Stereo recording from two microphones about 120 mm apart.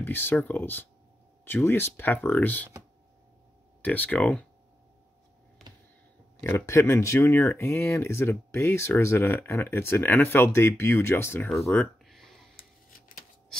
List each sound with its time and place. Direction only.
0.0 s speech: 20° left (ahead or behind)
3.8 s speech: 15° left (ahead or behind)
6.4 s speech: 20° left (ahead or behind)
12.1 s a sound: 5° left (ahead or behind)